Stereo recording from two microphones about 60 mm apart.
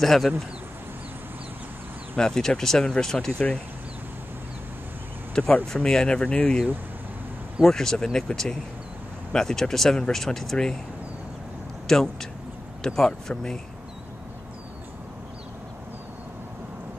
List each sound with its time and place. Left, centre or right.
0.0 s speech: centre
2.1 s speech: centre
5.4 s speech: centre
7.6 s speech: centre
11.9 s speech: centre